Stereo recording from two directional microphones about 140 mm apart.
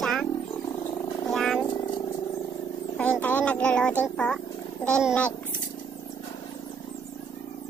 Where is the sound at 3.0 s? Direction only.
10° left (ahead or behind).